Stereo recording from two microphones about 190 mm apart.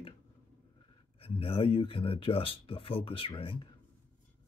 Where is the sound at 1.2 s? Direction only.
30° left (ahead or behind).